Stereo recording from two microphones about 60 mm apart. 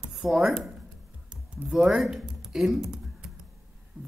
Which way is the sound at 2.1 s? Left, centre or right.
Centre.